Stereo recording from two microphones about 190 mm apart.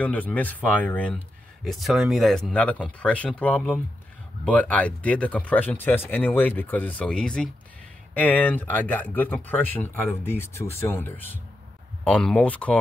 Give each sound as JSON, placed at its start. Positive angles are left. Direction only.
{"t": 0.0, "sound": "speech", "side_deg": 10}